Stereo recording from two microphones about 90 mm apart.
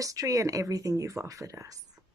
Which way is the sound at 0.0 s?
40° right (ahead or behind).